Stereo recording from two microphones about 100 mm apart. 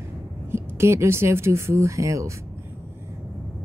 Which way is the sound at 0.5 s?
25° right (ahead or behind).